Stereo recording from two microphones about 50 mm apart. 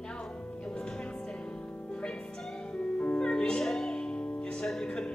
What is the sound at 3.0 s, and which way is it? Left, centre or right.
Music, left.